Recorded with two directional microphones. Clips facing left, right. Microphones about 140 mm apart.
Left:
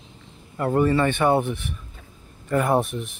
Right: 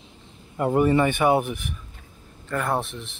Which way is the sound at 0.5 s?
15° right (ahead or behind).